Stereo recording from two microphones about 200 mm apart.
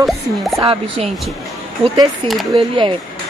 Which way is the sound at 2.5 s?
25° right (ahead or behind).